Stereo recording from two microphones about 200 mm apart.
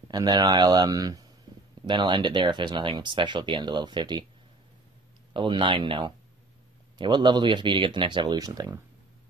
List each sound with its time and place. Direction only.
0.1 s speech: 20° right (ahead or behind)
5.3 s speech: 25° right (ahead or behind)